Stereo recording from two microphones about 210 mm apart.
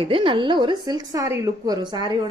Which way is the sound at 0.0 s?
25° right (ahead or behind).